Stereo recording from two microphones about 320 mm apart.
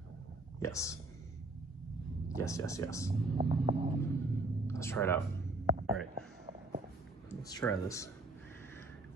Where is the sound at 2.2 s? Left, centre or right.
Centre.